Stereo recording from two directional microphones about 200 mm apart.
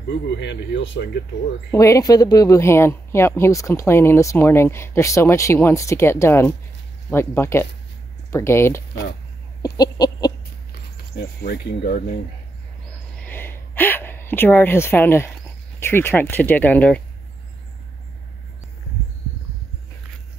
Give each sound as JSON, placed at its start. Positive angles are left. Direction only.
{"t": 0.4, "sound": "speech", "side_deg": 65}
{"t": 1.7, "sound": "speech", "side_deg": 15}
{"t": 9.8, "sound": "a sound", "side_deg": 20}
{"t": 11.4, "sound": "speech", "side_deg": 55}
{"t": 13.2, "sound": "a sound", "side_deg": 10}
{"t": 15.8, "sound": "speech", "side_deg": 10}